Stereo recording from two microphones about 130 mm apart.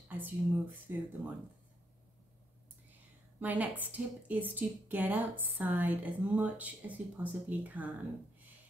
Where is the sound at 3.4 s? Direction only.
10° right (ahead or behind).